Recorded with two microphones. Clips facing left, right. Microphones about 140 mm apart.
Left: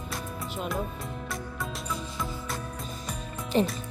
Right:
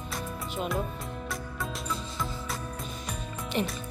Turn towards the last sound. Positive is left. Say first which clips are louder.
# left 5 dB
turn(degrees=35)  # may be behind; listen again after turning